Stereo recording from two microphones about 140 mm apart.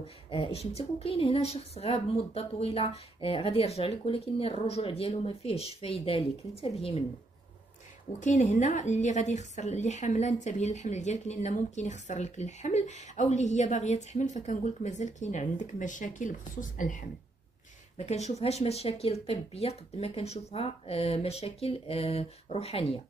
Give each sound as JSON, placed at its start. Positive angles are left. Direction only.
{"t": 0.0, "sound": "a woman's voice", "side_deg": 40}
{"t": 8.2, "sound": "a woman's voice", "side_deg": 60}
{"t": 17.9, "sound": "a woman's voice", "side_deg": 50}